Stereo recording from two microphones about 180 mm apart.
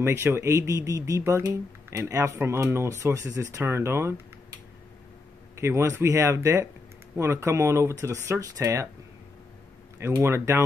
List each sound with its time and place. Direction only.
0.0 s speech: 15° right (ahead or behind)
5.6 s speech: 15° right (ahead or behind)
9.9 s speech: 15° right (ahead or behind)